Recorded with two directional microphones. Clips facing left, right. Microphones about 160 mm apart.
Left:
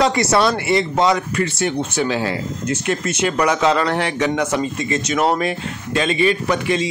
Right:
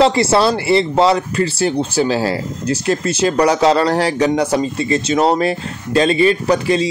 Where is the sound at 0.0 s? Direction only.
30° right (ahead or behind).